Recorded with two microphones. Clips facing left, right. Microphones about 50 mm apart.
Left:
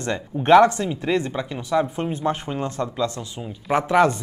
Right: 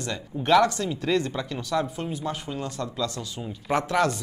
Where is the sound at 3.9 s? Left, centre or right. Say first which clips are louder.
Left 8 dB; left.